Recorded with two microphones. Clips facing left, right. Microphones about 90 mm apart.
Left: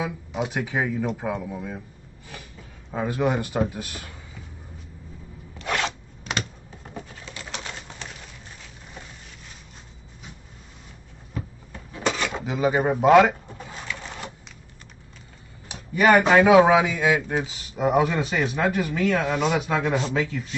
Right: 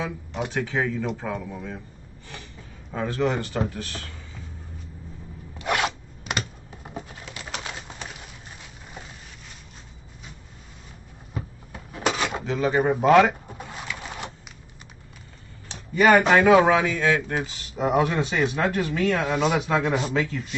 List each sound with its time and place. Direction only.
0.0 s speech: 10° left (ahead or behind)
2.9 s speech: 10° left (ahead or behind)
5.7 s zipper: 5° right (ahead or behind)
6.8 s pigeon: 10° right (ahead or behind)
11.3 s drawer open or close: 10° right (ahead or behind)
12.4 s speech: 10° left (ahead or behind)
13.3 s a sound: 10° right (ahead or behind)
13.7 s printer: 10° right (ahead or behind)
15.7 s speech: 5° left (ahead or behind)